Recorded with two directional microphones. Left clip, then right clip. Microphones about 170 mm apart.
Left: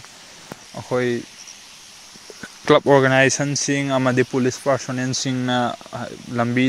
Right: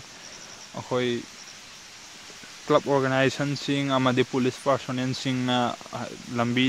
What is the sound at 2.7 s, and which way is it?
Speech, 40° left (ahead or behind).